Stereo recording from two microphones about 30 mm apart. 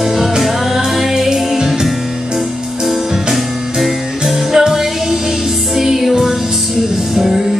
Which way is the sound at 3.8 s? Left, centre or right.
Centre.